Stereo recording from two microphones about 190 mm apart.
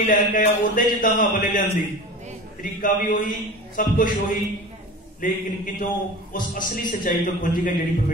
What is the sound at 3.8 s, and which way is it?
Speech, 45° left (ahead or behind).